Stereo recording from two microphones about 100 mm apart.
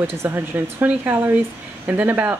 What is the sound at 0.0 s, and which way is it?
Speech, 25° right (ahead or behind).